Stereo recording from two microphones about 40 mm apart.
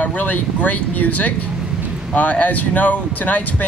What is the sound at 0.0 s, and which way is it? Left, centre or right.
Speech, left.